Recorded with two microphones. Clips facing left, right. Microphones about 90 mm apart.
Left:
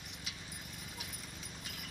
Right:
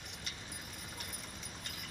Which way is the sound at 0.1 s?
Centre (ahead or behind).